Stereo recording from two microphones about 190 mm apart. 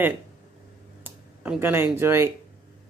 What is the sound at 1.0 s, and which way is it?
Speech, 10° right (ahead or behind).